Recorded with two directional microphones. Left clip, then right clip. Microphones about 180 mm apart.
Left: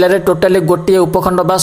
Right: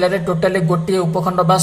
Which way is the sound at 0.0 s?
45° left (ahead or behind).